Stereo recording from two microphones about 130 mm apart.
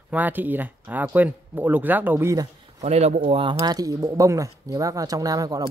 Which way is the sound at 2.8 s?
55° right (ahead or behind).